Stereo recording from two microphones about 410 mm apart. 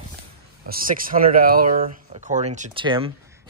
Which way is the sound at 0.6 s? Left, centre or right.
Right.